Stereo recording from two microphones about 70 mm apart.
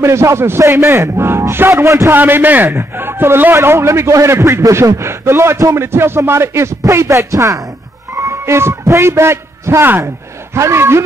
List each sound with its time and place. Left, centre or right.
0.0 s a man's voice: right
2.1 s a man's voice: right